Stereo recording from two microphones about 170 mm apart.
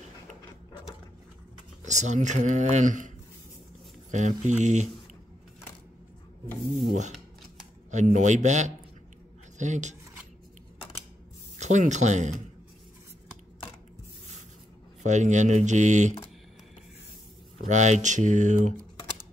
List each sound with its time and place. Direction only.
1.9 s speech: 45° right (ahead or behind)
4.1 s speech: 45° right (ahead or behind)
7.9 s speech: 45° right (ahead or behind)
11.5 s speech: 45° right (ahead or behind)
15.0 s speech: 45° right (ahead or behind)
17.6 s speech: 45° right (ahead or behind)